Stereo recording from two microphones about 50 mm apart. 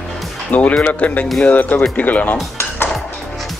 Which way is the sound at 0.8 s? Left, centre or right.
Left.